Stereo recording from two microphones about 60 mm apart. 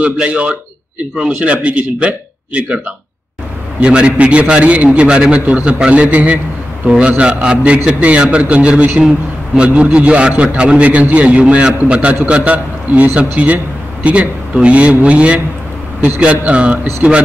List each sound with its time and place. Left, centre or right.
0.0 s a man's voice: centre
3.8 s a man's voice: centre